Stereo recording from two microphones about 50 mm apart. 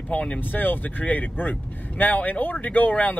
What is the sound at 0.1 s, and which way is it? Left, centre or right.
Speech, left.